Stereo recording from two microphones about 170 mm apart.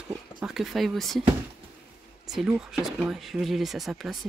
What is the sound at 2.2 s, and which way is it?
Speech, centre (ahead or behind).